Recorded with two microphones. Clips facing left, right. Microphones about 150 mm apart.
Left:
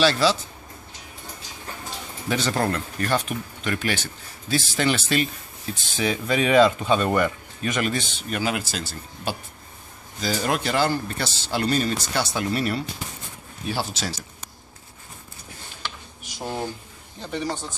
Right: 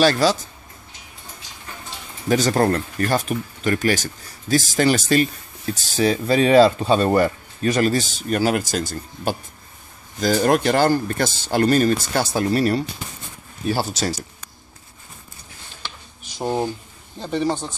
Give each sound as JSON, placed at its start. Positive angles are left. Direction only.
{"t": 0.0, "sound": "speech", "side_deg": -45}
{"t": 2.2, "sound": "speech", "side_deg": -40}
{"t": 17.2, "sound": "speech", "side_deg": -30}